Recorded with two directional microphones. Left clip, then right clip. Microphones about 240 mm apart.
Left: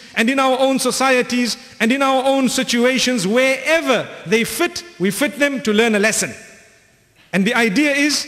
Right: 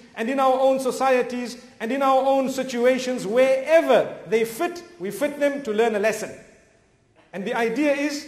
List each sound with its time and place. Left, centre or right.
0.1 s a man's voice: left